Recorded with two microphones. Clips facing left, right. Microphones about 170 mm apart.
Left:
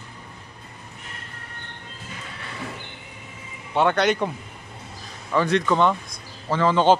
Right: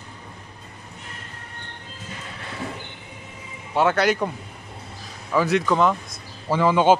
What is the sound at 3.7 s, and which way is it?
Speech, centre (ahead or behind).